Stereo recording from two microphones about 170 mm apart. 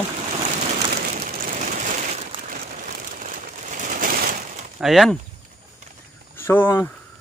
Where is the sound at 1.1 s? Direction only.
55° right (ahead or behind).